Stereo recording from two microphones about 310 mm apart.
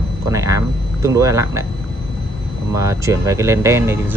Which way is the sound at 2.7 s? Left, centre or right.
Centre.